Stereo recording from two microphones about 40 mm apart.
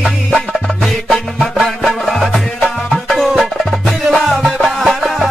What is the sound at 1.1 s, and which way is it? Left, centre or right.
Music, centre.